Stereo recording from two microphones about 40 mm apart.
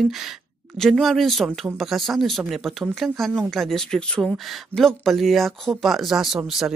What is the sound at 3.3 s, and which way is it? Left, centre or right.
Speech, centre.